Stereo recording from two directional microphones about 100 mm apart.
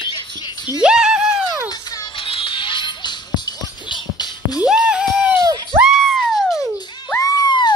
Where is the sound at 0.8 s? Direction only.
10° right (ahead or behind).